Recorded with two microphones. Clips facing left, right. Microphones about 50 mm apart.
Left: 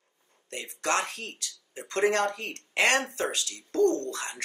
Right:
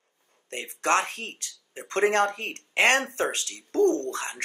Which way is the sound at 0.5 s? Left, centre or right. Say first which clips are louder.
Right 4 dB; right.